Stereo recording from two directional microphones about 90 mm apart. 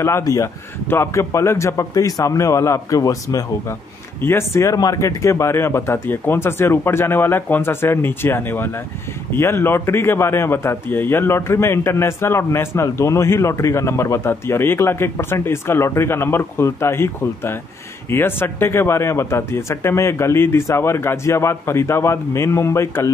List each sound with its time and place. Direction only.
0.0 s a man's voice: 35° left (ahead or behind)
4.2 s a man's voice: 25° left (ahead or behind)